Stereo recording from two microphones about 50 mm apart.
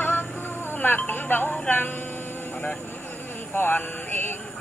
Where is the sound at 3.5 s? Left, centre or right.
Left.